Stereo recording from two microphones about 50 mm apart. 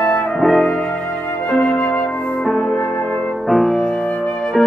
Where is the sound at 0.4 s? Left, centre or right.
Centre.